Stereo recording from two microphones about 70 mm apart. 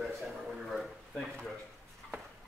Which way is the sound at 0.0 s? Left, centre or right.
Centre.